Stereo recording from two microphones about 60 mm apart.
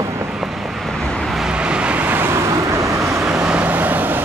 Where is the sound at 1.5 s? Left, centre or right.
Centre.